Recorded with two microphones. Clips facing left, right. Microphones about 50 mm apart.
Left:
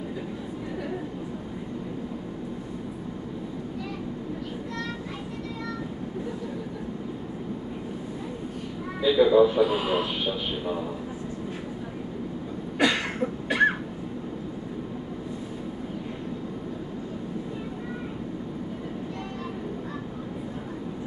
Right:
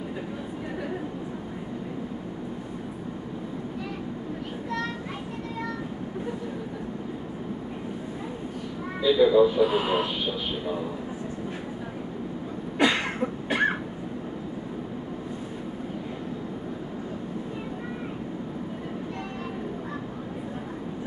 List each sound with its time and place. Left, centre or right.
9.0 s speech: centre
9.8 s speech: right
12.8 s a sound: right